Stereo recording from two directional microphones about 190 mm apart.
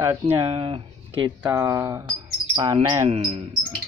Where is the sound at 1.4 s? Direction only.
15° right (ahead or behind); by 3.4 s 30° right (ahead or behind).